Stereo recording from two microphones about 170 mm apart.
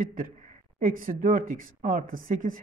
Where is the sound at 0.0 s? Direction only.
50° right (ahead or behind).